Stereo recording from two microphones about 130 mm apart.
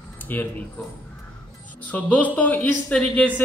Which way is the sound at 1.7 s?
10° left (ahead or behind).